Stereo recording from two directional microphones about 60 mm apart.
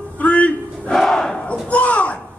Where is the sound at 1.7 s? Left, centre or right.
Left.